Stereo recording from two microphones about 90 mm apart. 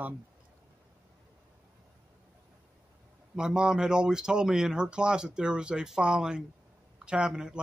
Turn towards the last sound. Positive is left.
turn(degrees=-10)  # may be behind; listen again after turning